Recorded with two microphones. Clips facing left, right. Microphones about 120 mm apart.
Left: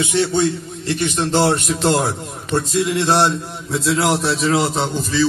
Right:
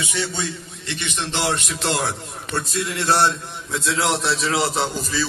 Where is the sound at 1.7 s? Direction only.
25° left (ahead or behind); by 4.9 s centre (ahead or behind).